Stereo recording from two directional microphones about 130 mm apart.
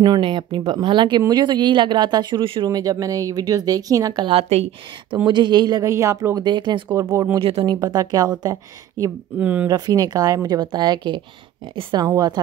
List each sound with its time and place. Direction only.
0.0 s speech: 40° right (ahead or behind)
2.7 s speech: 30° right (ahead or behind); by 4.6 s 50° right (ahead or behind)
5.1 s speech: 35° right (ahead or behind)
9.4 s speech: 15° right (ahead or behind)
9.7 s speech: 30° right (ahead or behind)